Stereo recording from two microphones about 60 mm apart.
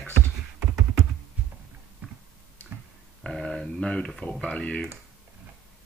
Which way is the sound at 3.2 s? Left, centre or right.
Centre.